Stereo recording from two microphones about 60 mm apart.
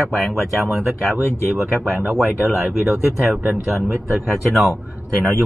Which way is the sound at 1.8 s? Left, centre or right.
Centre.